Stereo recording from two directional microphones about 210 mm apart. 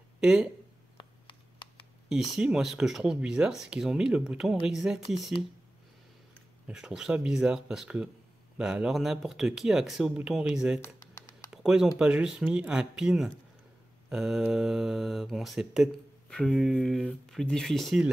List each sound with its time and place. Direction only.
0.2 s speech: 5° right (ahead or behind)
0.9 s a sound: 25° left (ahead or behind)
2.0 s speech: 5° right (ahead or behind)
6.7 s speech: 5° right (ahead or behind)
10.8 s typing: 15° left (ahead or behind)
11.5 s speech: 5° right (ahead or behind)